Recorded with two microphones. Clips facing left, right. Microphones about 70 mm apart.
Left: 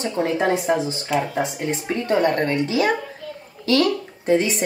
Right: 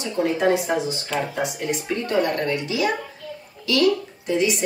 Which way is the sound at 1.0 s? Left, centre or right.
Centre.